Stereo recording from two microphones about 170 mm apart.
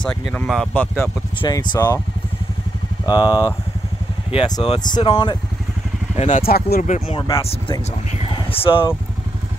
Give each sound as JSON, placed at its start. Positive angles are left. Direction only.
{"t": 0.0, "sound": "speech", "side_deg": 5}
{"t": 1.4, "sound": "speech", "side_deg": 25}
{"t": 3.1, "sound": "speech", "side_deg": 25}
{"t": 6.1, "sound": "speech", "side_deg": 40}
{"t": 6.4, "sound": "speech", "side_deg": 65}
{"t": 6.9, "sound": "speech", "side_deg": 30}